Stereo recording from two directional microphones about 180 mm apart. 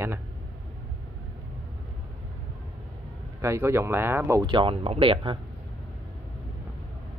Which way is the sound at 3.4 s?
15° right (ahead or behind).